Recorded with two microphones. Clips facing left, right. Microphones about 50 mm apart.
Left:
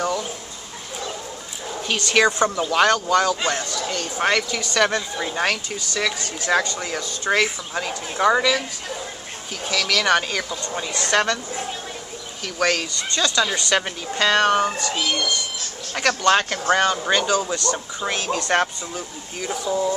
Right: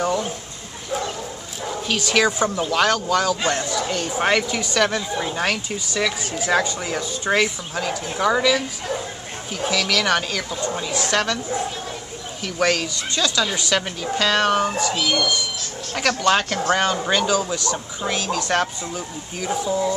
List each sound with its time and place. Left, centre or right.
0.0 s a sound: centre
2.1 s a woman's voice: centre
2.7 s speech: centre
3.6 s a woman's voice: centre
4.7 s speech: centre
7.7 s speech: centre
12.5 s speech: centre
18.0 s speech: centre
18.9 s speech: centre